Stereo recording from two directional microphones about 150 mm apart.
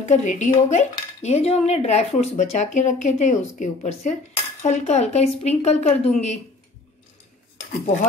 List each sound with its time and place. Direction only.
0.0 s cutlery: 50° left (ahead or behind)